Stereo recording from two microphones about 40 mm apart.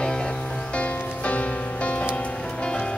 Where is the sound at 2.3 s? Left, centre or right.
Left.